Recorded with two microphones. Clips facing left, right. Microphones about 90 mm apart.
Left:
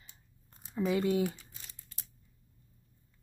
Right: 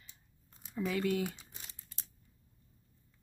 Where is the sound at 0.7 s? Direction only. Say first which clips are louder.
Left 4 dB; 25° left (ahead or behind).